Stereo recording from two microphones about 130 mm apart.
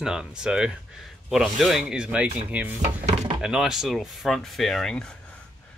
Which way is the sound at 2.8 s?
60° right (ahead or behind).